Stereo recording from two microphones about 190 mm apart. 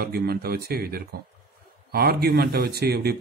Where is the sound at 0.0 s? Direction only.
55° right (ahead or behind).